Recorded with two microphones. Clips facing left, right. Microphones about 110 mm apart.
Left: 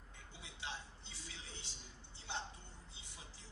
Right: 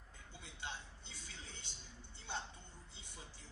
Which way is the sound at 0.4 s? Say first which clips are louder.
Even; 50° right (ahead or behind).